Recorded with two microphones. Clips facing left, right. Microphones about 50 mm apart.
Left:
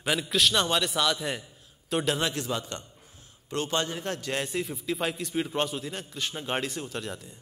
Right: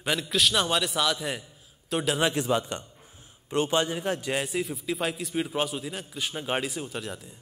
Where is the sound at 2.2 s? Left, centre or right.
Centre.